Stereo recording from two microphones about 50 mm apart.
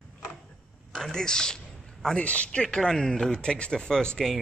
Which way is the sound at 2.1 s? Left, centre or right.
Left.